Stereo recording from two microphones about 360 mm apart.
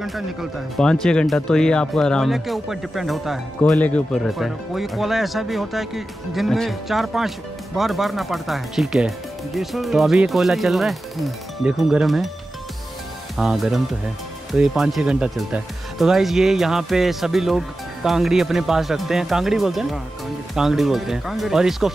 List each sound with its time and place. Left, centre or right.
0.0 s speech: centre
13.4 s speech: centre